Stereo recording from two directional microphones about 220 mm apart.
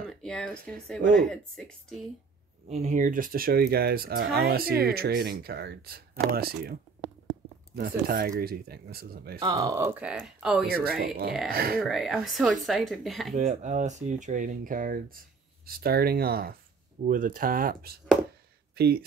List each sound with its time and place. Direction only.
0.0 s a sound: 5° left (ahead or behind)
1.1 s speech: centre (ahead or behind)
2.7 s speech: 30° right (ahead or behind)
9.4 s speech: 15° right (ahead or behind)
10.7 s speech: 45° right (ahead or behind)
11.8 s speech: centre (ahead or behind)
13.3 s speech: 35° right (ahead or behind)